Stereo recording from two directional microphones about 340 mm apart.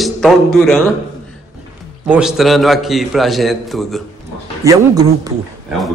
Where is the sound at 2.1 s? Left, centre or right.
Centre.